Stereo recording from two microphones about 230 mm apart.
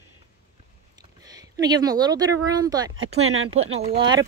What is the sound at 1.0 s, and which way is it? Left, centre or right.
Speech, centre.